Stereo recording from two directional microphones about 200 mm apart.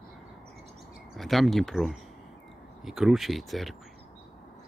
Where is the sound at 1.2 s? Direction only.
Centre (ahead or behind).